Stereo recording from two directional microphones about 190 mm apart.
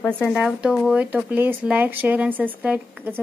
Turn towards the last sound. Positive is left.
turn(degrees=-10)  # may be behind; listen again after turning